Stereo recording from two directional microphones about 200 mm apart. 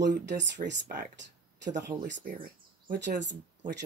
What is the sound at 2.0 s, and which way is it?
Speech, 50° right (ahead or behind).